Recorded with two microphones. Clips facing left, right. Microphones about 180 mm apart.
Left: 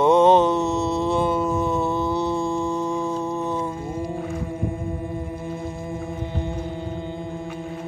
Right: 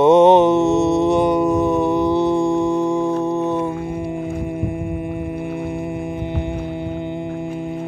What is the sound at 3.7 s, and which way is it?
Music, 65° right (ahead or behind).